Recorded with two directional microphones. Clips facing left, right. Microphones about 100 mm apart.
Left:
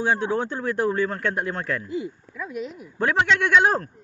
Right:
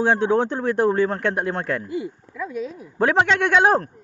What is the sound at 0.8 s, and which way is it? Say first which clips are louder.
Speech: right 4 dB; 25° right (ahead or behind).